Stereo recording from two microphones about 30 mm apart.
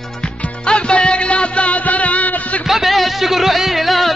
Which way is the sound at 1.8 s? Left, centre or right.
Left.